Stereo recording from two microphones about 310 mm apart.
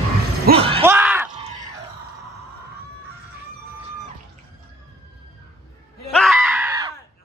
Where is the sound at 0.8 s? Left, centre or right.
Centre.